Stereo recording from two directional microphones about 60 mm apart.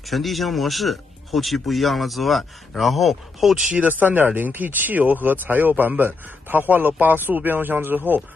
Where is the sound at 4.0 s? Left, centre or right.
Right.